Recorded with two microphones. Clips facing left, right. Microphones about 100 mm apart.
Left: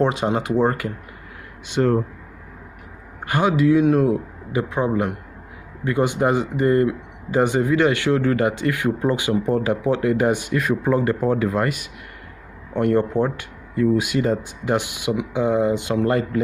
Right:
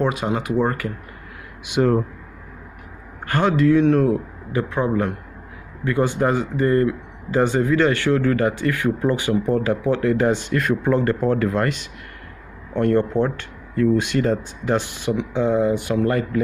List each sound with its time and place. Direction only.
0.0 s speech: 30° left (ahead or behind)
1.6 s speech: 10° right (ahead or behind)
3.3 s speech: 10° left (ahead or behind)